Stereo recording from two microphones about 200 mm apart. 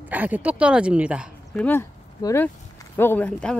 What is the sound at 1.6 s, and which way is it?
Speech, 10° left (ahead or behind).